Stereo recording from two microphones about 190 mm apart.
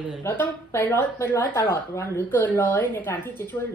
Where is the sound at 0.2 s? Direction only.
10° left (ahead or behind).